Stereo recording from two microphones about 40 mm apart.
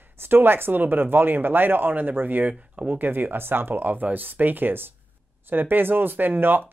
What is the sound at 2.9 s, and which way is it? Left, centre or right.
Speech, right.